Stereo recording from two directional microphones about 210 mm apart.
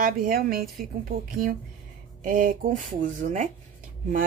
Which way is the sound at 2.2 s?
40° right (ahead or behind).